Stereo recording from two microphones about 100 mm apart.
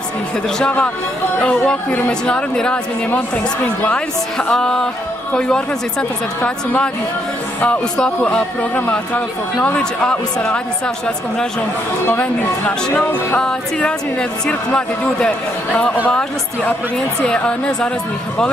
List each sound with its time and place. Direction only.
0.6 s a woman's voice: 10° left (ahead or behind)
12.1 s a woman's voice: 10° left (ahead or behind)
17.3 s a woman's voice: 10° left (ahead or behind)